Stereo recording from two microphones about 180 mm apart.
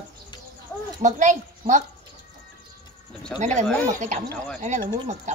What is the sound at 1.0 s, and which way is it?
Speech, 40° right (ahead or behind).